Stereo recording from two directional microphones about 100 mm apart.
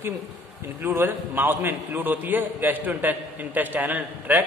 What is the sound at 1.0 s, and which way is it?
A man's voice, 20° right (ahead or behind).